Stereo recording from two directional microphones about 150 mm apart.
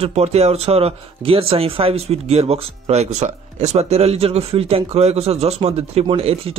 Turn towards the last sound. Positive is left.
turn(degrees=-40)  # may be behind; listen again after turning